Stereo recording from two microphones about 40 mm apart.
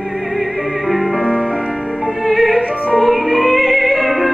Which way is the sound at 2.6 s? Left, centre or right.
Right.